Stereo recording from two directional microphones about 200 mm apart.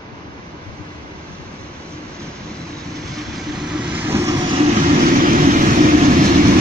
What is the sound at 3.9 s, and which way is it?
Vehicle, 10° right (ahead or behind).